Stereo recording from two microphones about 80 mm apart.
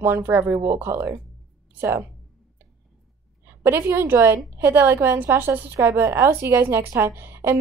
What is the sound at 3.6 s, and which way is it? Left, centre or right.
A woman's voice, right.